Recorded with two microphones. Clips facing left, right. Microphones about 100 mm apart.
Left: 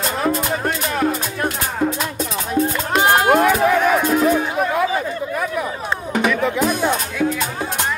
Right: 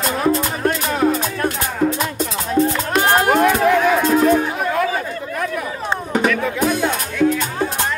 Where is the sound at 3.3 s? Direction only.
5° left (ahead or behind).